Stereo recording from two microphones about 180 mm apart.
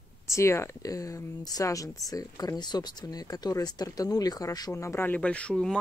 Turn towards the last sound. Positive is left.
turn(degrees=5)  # may be behind; listen again after turning